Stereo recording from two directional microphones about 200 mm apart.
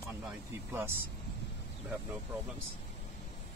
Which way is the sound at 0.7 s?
10° right (ahead or behind).